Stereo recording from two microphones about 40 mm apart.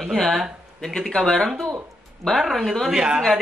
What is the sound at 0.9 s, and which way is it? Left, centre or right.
Speech, centre.